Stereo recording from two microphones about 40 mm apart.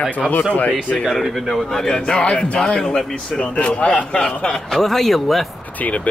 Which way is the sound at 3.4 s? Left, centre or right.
Left.